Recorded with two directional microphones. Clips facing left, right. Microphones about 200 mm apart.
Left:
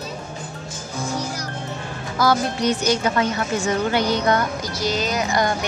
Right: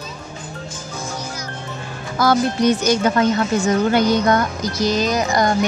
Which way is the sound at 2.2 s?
50° right (ahead or behind).